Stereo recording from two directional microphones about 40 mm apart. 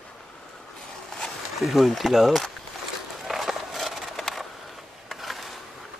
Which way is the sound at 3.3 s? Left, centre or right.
Centre.